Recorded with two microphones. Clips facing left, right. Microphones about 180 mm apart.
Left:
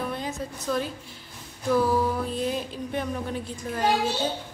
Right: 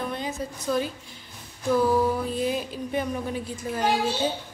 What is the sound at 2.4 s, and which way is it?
Speech, 5° right (ahead or behind).